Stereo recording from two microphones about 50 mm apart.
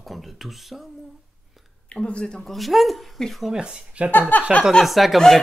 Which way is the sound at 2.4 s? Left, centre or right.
Centre.